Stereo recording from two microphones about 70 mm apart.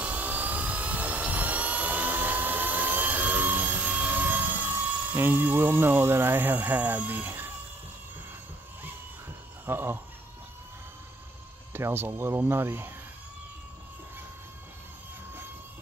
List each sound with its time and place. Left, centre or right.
0.0 s helicopter: right
9.7 s speech: right
11.7 s speech: right